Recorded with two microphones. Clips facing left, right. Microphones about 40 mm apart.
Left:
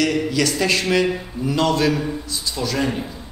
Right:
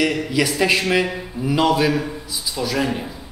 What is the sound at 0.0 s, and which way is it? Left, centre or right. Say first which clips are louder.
Speech: even; centre.